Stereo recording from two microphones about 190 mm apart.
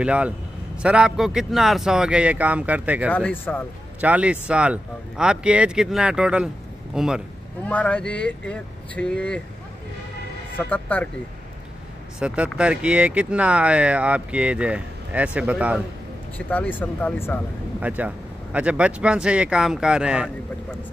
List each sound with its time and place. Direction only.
0.0 s speech: 5° right (ahead or behind)
3.1 s speech: 10° left (ahead or behind)
4.0 s speech: 5° right (ahead or behind)
7.6 s speech: 5° left (ahead or behind)
10.7 s speech: 10° left (ahead or behind)
12.2 s speech: 5° right (ahead or behind)
16.3 s speech: 10° left (ahead or behind)
17.7 s speech: 5° right (ahead or behind)